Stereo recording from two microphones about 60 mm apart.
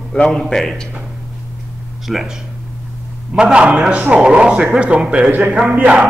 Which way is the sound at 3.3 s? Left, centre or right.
Centre.